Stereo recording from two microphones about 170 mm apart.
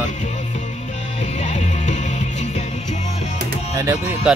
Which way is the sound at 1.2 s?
40° left (ahead or behind).